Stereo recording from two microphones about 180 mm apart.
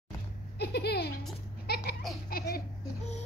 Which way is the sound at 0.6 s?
65° left (ahead or behind).